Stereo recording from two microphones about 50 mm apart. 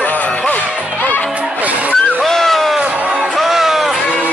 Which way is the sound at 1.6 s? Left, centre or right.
Right.